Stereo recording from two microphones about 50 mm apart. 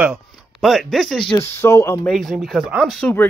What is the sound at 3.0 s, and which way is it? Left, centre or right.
Speech, left.